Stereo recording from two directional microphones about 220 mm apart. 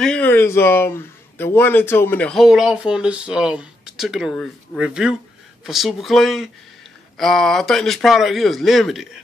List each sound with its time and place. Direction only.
0.0 s a man's voice: 5° left (ahead or behind)